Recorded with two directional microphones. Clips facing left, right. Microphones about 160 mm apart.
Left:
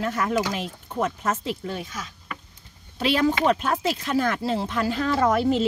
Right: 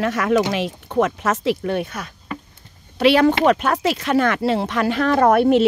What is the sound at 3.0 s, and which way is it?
Speech, 70° right (ahead or behind).